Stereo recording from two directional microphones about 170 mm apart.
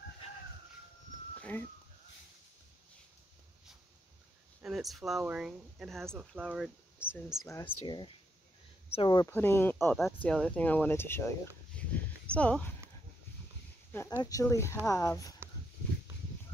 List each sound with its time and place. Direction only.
4.6 s speech: centre (ahead or behind)
7.4 s speech: 15° left (ahead or behind)
9.2 s speech: 15° left (ahead or behind)
9.9 s speech: centre (ahead or behind)
14.2 s speech: 20° left (ahead or behind)